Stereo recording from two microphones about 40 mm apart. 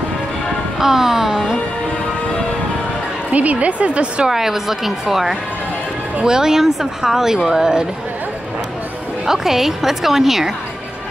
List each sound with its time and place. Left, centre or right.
0.7 s speech: centre
3.3 s a woman's voice: right
4.3 s speech: centre
9.2 s speech: centre